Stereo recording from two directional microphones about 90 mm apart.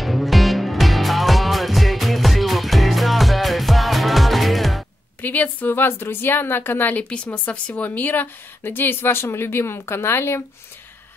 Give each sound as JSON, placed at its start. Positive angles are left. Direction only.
{"t": 0.0, "sound": "music", "side_deg": 0}
{"t": 5.2, "sound": "speech", "side_deg": 20}